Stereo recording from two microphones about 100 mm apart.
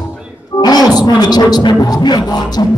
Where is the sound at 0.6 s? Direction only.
40° left (ahead or behind).